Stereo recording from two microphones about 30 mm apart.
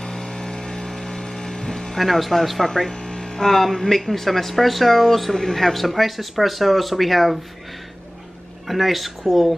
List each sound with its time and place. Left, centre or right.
0.0 s vehicle: left
2.0 s speech: centre
2.6 s music: centre
3.3 s speech: centre
8.6 s speech: centre